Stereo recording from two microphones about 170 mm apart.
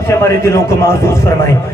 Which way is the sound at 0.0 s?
15° left (ahead or behind).